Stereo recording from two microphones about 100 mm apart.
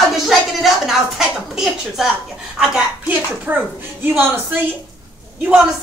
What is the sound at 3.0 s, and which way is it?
A child's voice, 20° right (ahead or behind).